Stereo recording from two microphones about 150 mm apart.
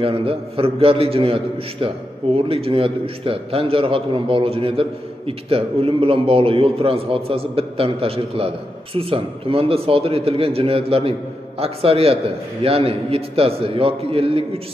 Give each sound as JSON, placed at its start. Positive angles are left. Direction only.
{"t": 0.0, "sound": "a man's voice", "side_deg": -40}